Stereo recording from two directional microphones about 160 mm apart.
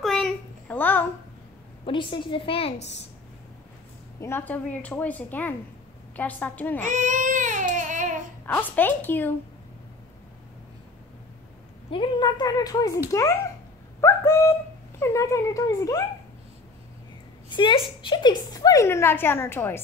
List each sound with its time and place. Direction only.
0.0 s a sound: centre (ahead or behind)
1.9 s a woman's voice: 30° left (ahead or behind)
4.2 s a woman's voice: 15° left (ahead or behind)
6.8 s baby cry: 50° right (ahead or behind)
8.5 s a woman's voice: 10° left (ahead or behind)
11.9 s a woman's voice: 30° left (ahead or behind)
17.6 s a woman's voice: 30° left (ahead or behind); by 19.8 s 15° left (ahead or behind)